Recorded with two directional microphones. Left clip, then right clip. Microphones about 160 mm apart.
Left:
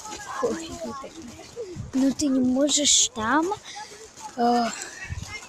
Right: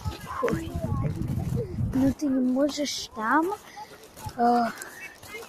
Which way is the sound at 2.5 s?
25° left (ahead or behind).